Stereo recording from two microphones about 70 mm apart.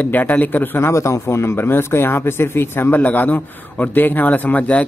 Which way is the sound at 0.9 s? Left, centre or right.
Left.